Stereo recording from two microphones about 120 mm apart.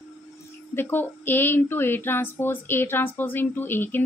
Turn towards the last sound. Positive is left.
turn(degrees=15)  # may be behind; listen again after turning